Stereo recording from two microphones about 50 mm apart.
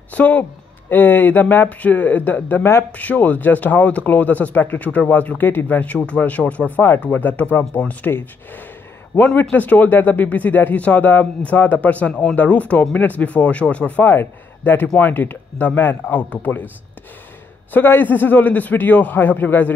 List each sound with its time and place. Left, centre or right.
0.1 s a woman's voice: left
0.8 s a man's voice: left
5.4 s a man's voice: left
7.8 s speech: left
9.1 s a man's voice: left
12.1 s speech: centre
14.0 s a man's voice: left
17.7 s a man's voice: left